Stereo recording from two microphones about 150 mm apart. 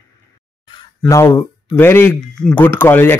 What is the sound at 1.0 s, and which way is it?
Speech, 20° left (ahead or behind).